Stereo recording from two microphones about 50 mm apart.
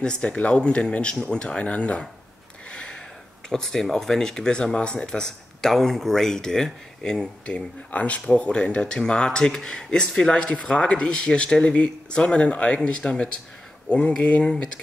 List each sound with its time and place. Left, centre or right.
0.0 s speech: centre
2.7 s a sound: left
3.4 s speech: centre
7.5 s speech: left